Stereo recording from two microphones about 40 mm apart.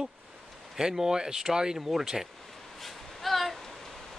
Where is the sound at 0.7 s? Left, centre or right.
Centre.